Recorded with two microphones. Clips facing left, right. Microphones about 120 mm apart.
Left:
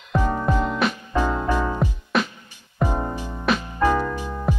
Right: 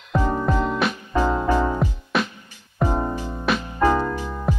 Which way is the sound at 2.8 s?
15° right (ahead or behind).